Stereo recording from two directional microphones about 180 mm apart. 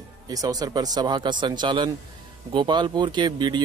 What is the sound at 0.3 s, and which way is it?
Speech, 20° right (ahead or behind).